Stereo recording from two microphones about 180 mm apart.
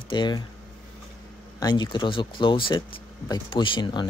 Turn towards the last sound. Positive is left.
turn(degrees=25)  # may be behind; listen again after turning